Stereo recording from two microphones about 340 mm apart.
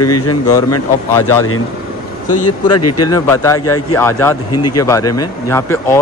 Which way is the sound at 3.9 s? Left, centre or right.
Centre.